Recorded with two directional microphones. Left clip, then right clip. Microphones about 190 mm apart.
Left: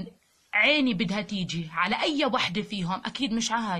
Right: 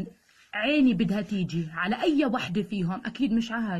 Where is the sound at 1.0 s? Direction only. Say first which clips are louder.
Even; 45° left (ahead or behind).